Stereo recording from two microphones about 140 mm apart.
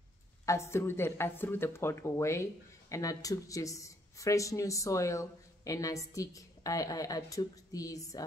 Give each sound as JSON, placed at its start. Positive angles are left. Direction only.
{"t": 0.5, "sound": "speech", "side_deg": 20}